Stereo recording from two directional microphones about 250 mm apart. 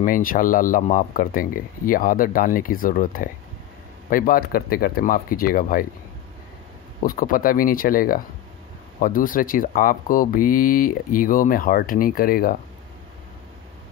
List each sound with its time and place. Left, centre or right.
0.0 s speech: left
7.0 s speech: left